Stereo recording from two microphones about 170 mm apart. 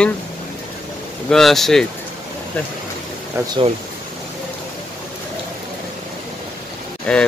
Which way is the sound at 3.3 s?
15° right (ahead or behind).